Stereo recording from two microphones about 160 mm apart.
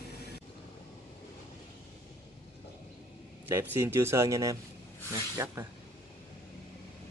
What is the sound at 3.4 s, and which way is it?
A man's voice, 15° right (ahead or behind).